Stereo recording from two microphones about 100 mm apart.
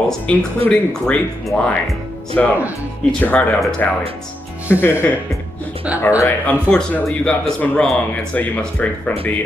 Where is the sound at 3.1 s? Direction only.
15° left (ahead or behind).